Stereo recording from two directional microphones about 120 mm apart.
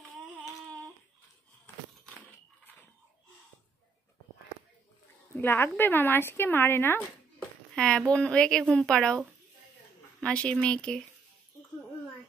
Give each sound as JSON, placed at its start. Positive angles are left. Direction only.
{"t": 5.3, "sound": "speech", "side_deg": 20}
{"t": 7.7, "sound": "speech", "side_deg": 5}
{"t": 10.2, "sound": "speech", "side_deg": 10}